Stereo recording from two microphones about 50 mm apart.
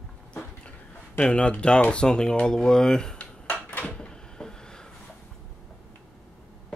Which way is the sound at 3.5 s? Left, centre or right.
Left.